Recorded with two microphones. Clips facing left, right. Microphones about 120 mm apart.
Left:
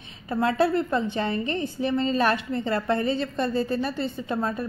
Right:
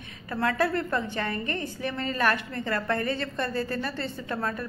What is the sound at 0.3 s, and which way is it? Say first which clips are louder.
A woman's voice: left 4 dB; 20° left (ahead or behind).